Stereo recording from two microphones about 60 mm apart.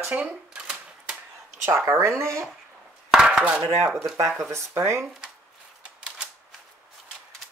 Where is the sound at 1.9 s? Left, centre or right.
Right.